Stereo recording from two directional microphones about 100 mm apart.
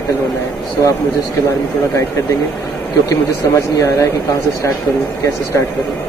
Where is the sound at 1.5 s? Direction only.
30° left (ahead or behind).